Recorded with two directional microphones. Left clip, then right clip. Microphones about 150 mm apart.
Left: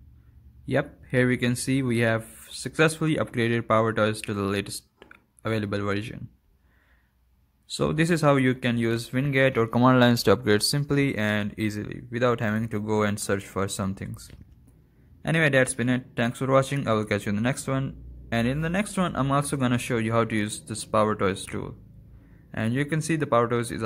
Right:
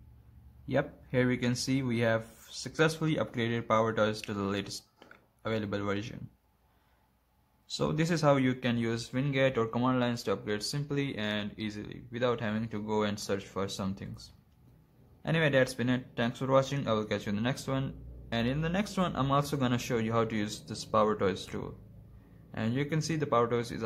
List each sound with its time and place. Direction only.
0.7 s speech: 30° left (ahead or behind)
7.7 s speech: 30° left (ahead or behind)
9.9 s speech: 60° left (ahead or behind)
10.8 s speech: 45° left (ahead or behind); by 23.8 s 25° left (ahead or behind)